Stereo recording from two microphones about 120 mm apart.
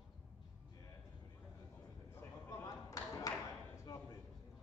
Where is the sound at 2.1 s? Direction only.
25° left (ahead or behind).